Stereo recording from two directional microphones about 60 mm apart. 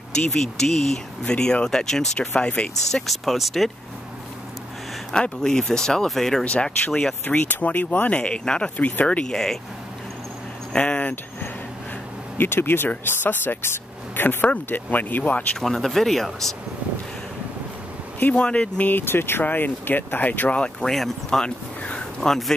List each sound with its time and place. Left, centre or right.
0.3 s speech: centre
2.9 s speech: centre
5.1 s speech: centre
6.4 s speech: centre
6.9 s speech: centre
7.2 s speech: left
9.2 s speech: centre
10.7 s speech: centre
12.4 s speech: left
15.6 s speech: centre
18.2 s speech: centre
18.9 s speech: left; by 20.9 s centre
21.3 s a sound: centre